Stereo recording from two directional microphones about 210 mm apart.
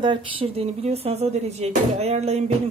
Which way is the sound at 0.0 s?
25° right (ahead or behind).